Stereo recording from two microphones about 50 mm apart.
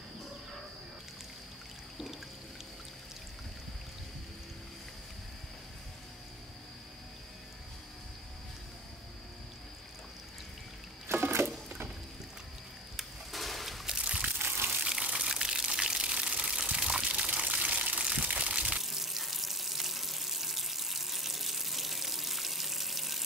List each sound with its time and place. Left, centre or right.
11.1 s sewing machine: right
12.9 s a sound: centre
14.8 s water: centre
18.8 s water: centre